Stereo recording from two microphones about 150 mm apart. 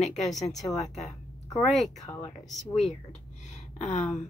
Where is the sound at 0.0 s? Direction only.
50° left (ahead or behind).